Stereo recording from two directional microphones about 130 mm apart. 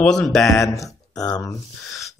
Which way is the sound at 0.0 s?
5° left (ahead or behind).